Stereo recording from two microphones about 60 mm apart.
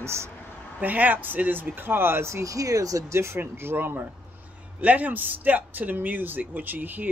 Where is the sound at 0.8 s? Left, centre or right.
Right.